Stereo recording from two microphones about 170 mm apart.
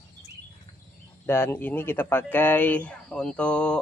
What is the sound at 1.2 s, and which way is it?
Speech, 15° left (ahead or behind).